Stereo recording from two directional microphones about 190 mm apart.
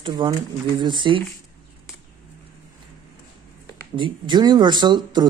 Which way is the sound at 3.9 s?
25° right (ahead or behind).